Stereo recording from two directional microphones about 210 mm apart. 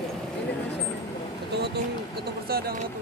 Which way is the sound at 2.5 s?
45° right (ahead or behind).